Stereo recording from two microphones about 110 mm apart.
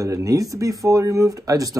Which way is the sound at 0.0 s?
30° right (ahead or behind).